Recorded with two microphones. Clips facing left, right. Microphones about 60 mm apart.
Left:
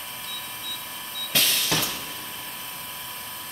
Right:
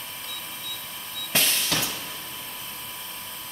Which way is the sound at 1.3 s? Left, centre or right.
Right.